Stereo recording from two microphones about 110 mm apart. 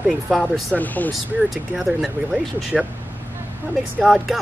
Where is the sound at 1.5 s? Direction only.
Centre (ahead or behind).